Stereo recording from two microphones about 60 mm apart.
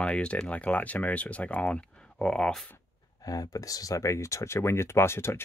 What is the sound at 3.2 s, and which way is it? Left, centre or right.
Speech, left.